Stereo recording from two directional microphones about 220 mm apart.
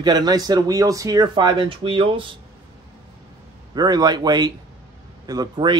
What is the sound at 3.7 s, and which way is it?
Speech, 20° right (ahead or behind).